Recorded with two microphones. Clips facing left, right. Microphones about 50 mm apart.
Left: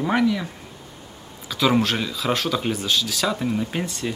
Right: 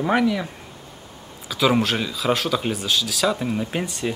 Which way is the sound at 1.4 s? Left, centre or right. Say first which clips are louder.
Even; centre.